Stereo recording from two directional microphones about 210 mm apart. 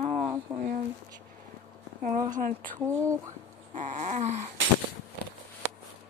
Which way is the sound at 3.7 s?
35° right (ahead or behind).